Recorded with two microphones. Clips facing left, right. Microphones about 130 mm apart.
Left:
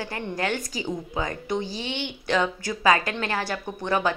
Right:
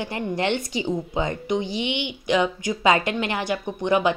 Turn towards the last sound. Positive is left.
turn(degrees=-20)  # may be behind; listen again after turning